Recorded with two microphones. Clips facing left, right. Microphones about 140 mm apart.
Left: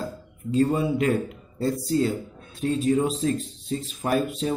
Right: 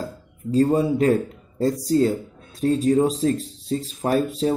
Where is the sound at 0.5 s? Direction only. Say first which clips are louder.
Right 3 dB; 35° right (ahead or behind).